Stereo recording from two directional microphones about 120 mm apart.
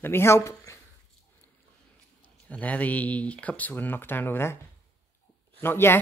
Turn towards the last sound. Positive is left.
turn(degrees=20)  # may be behind; listen again after turning